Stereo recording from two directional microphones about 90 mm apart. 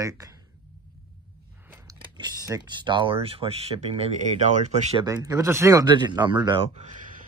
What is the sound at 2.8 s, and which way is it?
Speech, 65° right (ahead or behind).